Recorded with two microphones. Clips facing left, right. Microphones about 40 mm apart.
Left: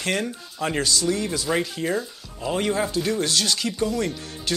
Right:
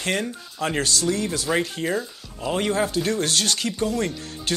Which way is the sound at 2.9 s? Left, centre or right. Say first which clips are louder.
Even; right.